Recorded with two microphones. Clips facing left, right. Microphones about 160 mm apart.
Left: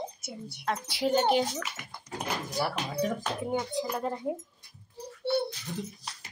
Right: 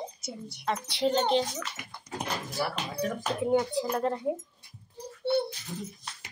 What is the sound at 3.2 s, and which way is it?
Speech, centre (ahead or behind).